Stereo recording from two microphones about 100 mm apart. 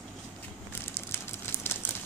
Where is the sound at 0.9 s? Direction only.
25° left (ahead or behind).